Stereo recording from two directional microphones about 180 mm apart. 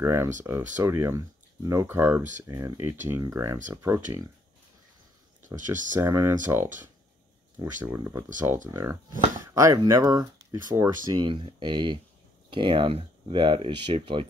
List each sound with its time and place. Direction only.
0.0 s speech: 15° right (ahead or behind)
5.5 s speech: 15° right (ahead or behind)
9.5 s speech: 20° right (ahead or behind)